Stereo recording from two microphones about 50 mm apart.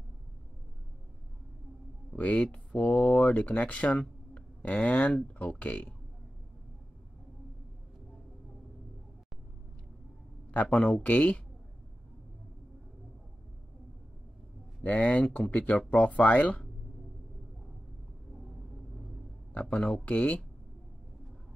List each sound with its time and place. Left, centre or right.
2.1 s speech: left
10.5 s speech: left
14.8 s speech: left
19.5 s speech: left